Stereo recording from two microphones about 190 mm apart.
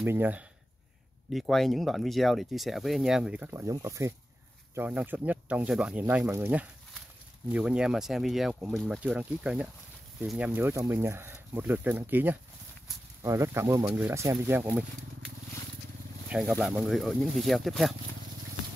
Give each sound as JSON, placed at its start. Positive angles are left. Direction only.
{"t": 0.0, "sound": "speech", "side_deg": -10}
{"t": 16.3, "sound": "speech", "side_deg": 0}